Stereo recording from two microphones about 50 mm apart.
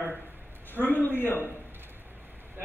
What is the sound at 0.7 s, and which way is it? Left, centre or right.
Speech, left.